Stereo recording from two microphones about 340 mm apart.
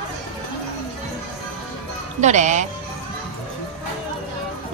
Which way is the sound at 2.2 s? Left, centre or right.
Right.